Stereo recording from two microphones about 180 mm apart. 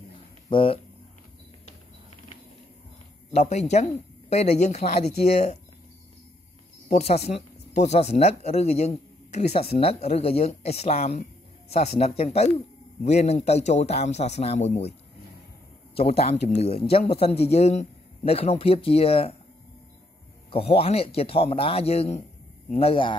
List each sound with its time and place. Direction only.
0.5 s speech: 30° left (ahead or behind)
3.3 s speech: 40° left (ahead or behind)
6.9 s speech: 35° left (ahead or behind)
16.0 s speech: 35° left (ahead or behind)
20.5 s speech: 30° left (ahead or behind)